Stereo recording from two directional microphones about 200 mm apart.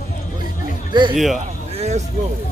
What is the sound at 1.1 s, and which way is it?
Speech, centre (ahead or behind).